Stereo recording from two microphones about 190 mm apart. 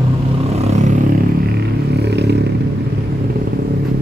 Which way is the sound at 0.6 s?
35° right (ahead or behind).